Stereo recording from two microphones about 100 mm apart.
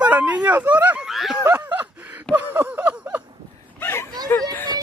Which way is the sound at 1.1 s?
Centre (ahead or behind).